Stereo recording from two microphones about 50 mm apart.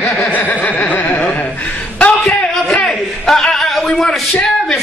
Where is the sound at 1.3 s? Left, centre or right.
Left.